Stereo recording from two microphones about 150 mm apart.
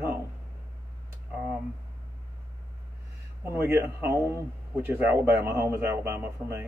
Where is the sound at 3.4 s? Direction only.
15° right (ahead or behind).